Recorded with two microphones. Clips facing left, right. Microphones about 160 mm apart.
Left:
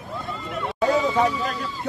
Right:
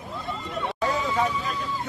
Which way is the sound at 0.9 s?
85° left.